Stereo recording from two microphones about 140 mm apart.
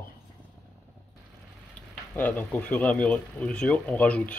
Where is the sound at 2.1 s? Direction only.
10° left (ahead or behind).